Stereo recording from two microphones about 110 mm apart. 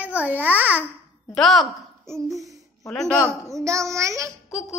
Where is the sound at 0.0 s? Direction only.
15° right (ahead or behind).